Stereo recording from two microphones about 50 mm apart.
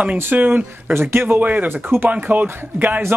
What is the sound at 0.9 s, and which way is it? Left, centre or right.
Speech, right.